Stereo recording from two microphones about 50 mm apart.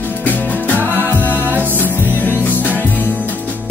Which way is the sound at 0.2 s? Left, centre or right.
Left.